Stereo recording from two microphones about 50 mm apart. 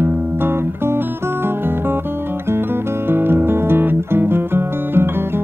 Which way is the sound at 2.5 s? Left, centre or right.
Right.